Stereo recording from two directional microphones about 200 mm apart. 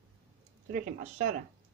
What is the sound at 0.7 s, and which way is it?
Speech, 40° right (ahead or behind).